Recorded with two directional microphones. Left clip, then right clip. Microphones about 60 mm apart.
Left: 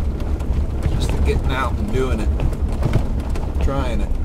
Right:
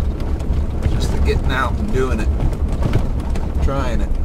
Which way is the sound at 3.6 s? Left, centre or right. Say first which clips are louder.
Right 2 dB; centre.